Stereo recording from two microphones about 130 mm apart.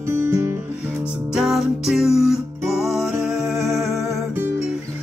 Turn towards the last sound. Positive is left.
turn(degrees=0)  # may be behind; listen again after turning